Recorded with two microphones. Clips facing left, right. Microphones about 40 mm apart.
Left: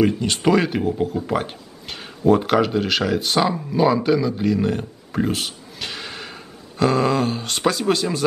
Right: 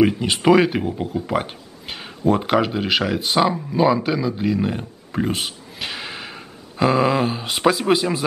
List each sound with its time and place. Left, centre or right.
0.0 s speech: right